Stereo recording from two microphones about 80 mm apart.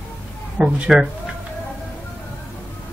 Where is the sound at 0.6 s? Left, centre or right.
Centre.